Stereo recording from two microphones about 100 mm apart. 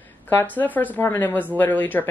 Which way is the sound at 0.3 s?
20° left (ahead or behind).